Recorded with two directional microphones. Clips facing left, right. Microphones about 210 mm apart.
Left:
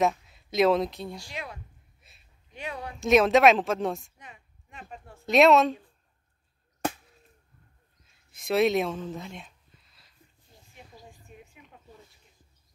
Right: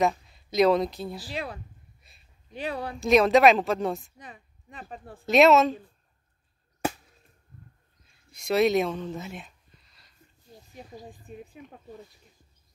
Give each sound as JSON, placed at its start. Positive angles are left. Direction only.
{"t": 0.0, "sound": "speech", "side_deg": 0}
{"t": 1.3, "sound": "speech", "side_deg": -30}
{"t": 2.0, "sound": "a sound", "side_deg": 0}
{"t": 2.5, "sound": "speech", "side_deg": -35}
{"t": 3.0, "sound": "a woman's voice", "side_deg": 0}
{"t": 4.2, "sound": "speech", "side_deg": -35}
{"t": 5.2, "sound": "a woman's voice", "side_deg": 0}
{"t": 8.3, "sound": "speech", "side_deg": 0}
{"t": 10.7, "sound": "a sound", "side_deg": -35}